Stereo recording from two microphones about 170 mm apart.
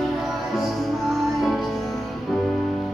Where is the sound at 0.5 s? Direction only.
Centre (ahead or behind).